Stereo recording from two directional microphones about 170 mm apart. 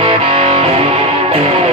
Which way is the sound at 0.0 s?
30° right (ahead or behind).